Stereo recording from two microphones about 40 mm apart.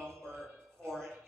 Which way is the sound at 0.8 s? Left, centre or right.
Centre.